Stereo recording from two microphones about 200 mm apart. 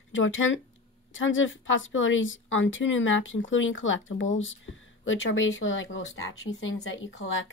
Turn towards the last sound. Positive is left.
turn(degrees=75)  # may be behind; listen again after turning